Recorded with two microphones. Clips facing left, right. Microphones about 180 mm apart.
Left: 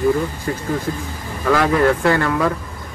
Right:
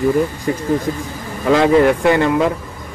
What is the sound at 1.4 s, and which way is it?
A man's voice, 20° right (ahead or behind).